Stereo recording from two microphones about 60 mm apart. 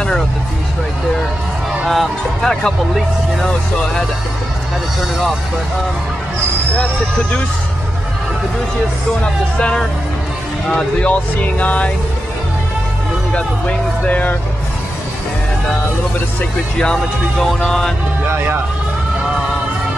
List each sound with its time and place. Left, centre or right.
1.9 s speech: centre
9.2 s speech: centre
14.0 s speech: left
17.5 s speech: centre